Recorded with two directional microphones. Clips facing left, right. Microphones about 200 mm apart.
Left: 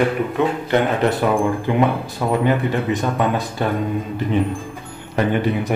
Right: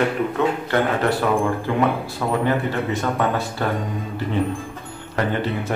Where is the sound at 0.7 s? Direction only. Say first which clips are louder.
Left 2 dB; 20° left (ahead or behind).